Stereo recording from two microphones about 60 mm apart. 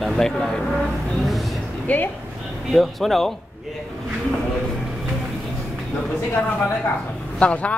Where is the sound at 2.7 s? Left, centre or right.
Centre.